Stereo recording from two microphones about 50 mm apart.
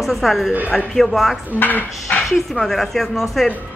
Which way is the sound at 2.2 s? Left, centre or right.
Centre.